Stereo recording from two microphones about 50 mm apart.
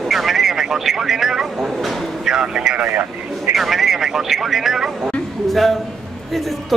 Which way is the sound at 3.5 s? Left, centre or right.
Centre.